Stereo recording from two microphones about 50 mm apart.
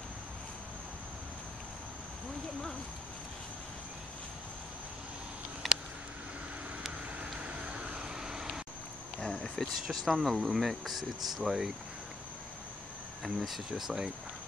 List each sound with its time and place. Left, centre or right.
5.6 s a sound: centre
7.4 s vehicle: centre
9.2 s cricket: centre
9.8 s speech: centre
13.2 s speech: centre